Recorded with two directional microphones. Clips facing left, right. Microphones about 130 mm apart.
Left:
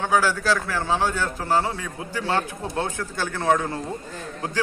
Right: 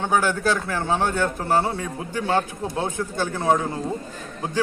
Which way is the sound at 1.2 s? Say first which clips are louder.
Right 2 dB; 25° right (ahead or behind).